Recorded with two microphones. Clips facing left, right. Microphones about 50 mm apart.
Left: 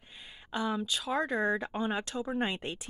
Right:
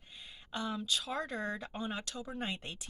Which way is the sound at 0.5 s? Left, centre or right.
Centre.